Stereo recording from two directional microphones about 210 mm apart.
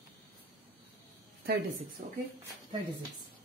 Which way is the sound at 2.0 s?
40° right (ahead or behind).